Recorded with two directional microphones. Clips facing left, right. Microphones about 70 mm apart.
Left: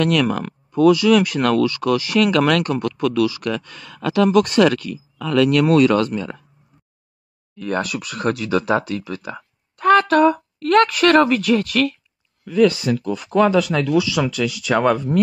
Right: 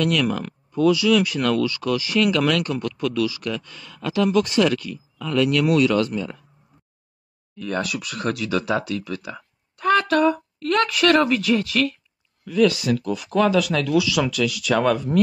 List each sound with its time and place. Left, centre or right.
0.0 s speech: left
5.2 s speech: left
5.5 s speech: left
7.6 s speech: left
12.4 s speech: left